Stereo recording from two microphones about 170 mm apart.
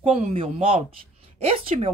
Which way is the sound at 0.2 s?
35° right (ahead or behind).